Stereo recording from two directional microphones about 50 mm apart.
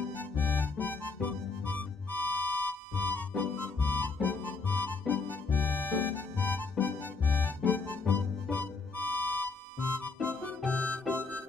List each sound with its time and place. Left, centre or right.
0.2 s music: left
10.7 s harmonica: left